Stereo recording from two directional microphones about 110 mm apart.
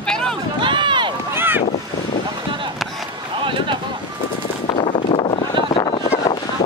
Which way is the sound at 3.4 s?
50° right (ahead or behind).